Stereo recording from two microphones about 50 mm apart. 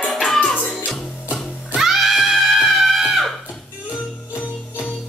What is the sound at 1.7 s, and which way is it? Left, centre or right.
Music, centre.